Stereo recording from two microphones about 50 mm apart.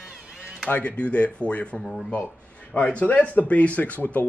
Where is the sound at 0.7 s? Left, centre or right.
Left.